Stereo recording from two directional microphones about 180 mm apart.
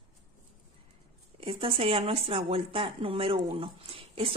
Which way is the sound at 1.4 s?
30° right (ahead or behind).